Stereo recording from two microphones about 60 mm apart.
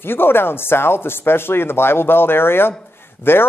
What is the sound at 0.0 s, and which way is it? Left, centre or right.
A man's voice, left.